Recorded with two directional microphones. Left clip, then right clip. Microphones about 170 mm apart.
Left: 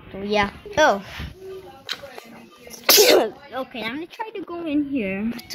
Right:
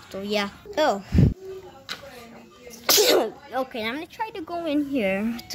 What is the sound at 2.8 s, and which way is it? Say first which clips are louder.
Speech: left 4 dB; 20° left (ahead or behind).